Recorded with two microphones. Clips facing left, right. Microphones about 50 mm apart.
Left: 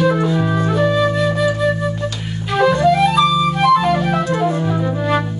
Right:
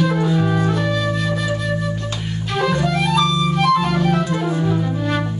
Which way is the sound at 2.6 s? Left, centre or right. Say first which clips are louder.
Left 6 dB; left.